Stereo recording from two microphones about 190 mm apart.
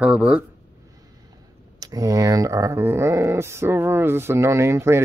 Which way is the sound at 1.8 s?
20° right (ahead or behind).